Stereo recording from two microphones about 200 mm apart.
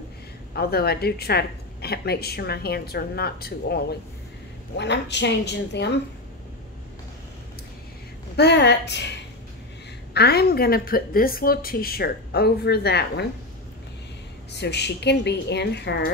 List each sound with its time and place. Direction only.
0.6 s a woman's voice: 50° left (ahead or behind)
8.4 s a woman's voice: 55° left (ahead or behind)
10.1 s a woman's voice: 55° left (ahead or behind)
14.5 s a woman's voice: 60° left (ahead or behind)